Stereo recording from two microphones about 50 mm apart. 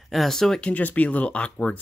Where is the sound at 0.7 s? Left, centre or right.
Left.